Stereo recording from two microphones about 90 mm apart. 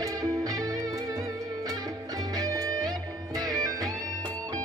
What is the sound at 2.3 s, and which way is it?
Music, 40° right (ahead or behind).